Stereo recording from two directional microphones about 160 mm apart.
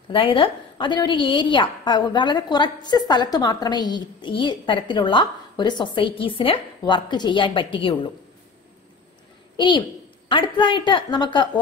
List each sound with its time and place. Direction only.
0.1 s a woman's voice: 35° left (ahead or behind)
9.6 s a woman's voice: 30° left (ahead or behind)